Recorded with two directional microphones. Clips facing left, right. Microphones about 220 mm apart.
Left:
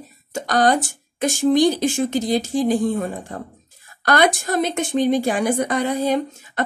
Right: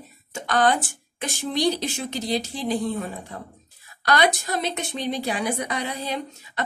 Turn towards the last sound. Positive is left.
turn(degrees=50)  # may be behind; listen again after turning